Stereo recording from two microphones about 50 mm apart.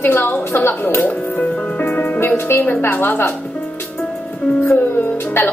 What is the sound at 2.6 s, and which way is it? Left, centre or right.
Speech, left.